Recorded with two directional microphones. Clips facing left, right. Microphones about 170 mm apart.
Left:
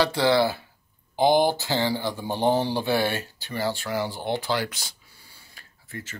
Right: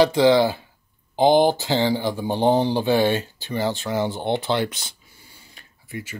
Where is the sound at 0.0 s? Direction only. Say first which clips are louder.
Right 5 dB; 15° right (ahead or behind).